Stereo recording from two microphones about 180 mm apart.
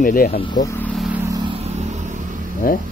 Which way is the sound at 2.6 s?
55° left (ahead or behind).